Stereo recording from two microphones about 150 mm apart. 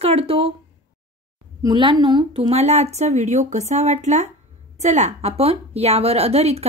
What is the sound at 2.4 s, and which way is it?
A woman's voice, 45° right (ahead or behind).